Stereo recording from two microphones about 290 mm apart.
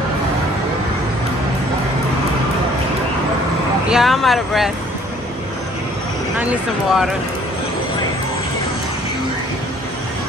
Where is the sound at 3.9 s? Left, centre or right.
Centre.